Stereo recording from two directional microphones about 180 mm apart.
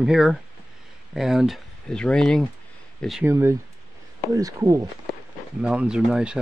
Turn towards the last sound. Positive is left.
turn(degrees=-5)  # may be behind; listen again after turning